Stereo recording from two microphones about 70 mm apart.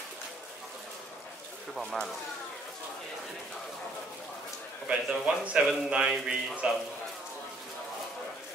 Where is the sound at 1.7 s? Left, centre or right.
Centre.